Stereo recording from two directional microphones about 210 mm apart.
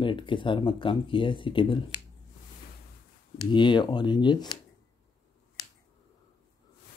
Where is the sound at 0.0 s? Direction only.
25° left (ahead or behind).